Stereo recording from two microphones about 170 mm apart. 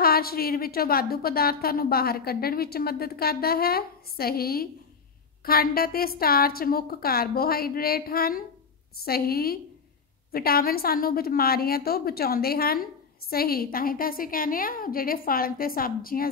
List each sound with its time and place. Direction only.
0.0 s a woman's voice: 60° left (ahead or behind)